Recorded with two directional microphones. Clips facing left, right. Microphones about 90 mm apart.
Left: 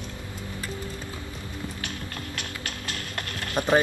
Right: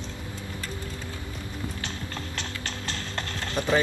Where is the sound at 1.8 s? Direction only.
25° right (ahead or behind).